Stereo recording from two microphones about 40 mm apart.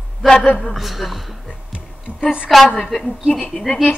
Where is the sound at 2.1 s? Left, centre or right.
Right.